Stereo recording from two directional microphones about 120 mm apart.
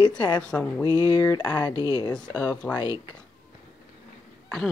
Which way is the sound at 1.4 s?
10° left (ahead or behind).